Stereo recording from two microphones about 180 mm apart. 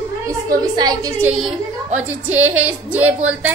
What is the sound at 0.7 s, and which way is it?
Speech, 20° right (ahead or behind).